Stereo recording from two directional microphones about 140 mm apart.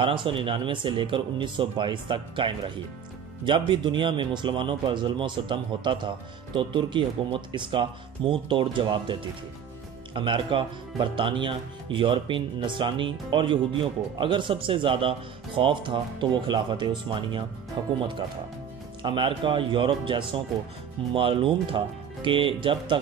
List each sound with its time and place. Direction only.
0.0 s speech: 35° right (ahead or behind)
19.0 s speech: 35° right (ahead or behind)